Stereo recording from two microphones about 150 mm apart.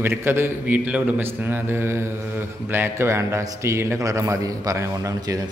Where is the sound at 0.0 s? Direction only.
15° right (ahead or behind).